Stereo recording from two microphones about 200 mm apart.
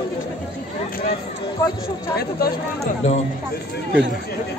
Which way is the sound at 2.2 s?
50° left (ahead or behind).